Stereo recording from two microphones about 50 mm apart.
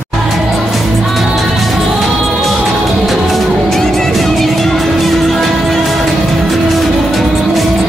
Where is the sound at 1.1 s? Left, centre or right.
Centre.